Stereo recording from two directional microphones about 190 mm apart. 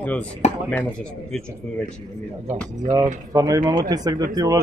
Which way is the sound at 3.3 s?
20° right (ahead or behind).